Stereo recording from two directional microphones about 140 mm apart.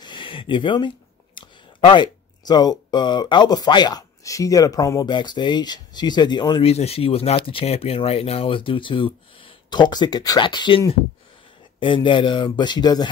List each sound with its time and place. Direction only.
0.0 s speech: 35° left (ahead or behind)
6.6 s speech: 50° left (ahead or behind)
11.8 s speech: 35° left (ahead or behind)